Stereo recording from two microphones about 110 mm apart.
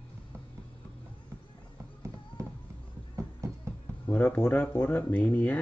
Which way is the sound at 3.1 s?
25° right (ahead or behind).